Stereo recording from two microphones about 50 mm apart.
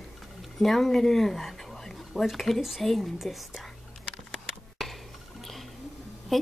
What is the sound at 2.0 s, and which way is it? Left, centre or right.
Speech, centre.